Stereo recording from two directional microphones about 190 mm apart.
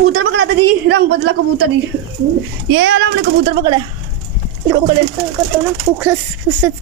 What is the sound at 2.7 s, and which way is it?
Speech, 75° right (ahead or behind).